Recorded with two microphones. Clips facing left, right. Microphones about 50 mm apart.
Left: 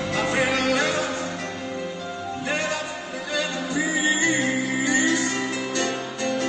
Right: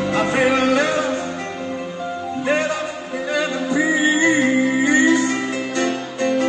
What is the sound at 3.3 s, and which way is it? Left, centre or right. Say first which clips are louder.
Music: right 6 dB; right.